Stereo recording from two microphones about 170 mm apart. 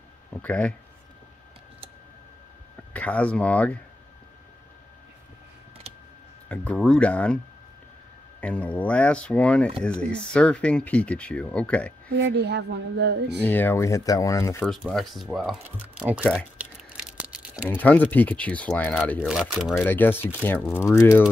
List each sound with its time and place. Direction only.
0.4 s speech: 10° left (ahead or behind)
2.9 s speech: 10° left (ahead or behind)
6.5 s speech: 5° left (ahead or behind)
8.4 s speech: 10° left (ahead or behind)
12.2 s speech: 85° right
13.4 s speech: 10° left (ahead or behind)
14.7 s speech: centre (ahead or behind)
16.5 s a sound: 5° right (ahead or behind)
17.6 s speech: 10° left (ahead or behind)
19.2 s speech: 5° right (ahead or behind)
19.7 s speech: 10° left (ahead or behind)